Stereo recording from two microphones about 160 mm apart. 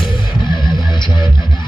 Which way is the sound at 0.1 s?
30° left (ahead or behind).